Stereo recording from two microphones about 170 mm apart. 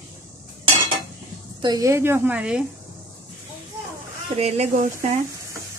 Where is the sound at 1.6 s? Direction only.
25° right (ahead or behind); by 2.6 s 5° right (ahead or behind).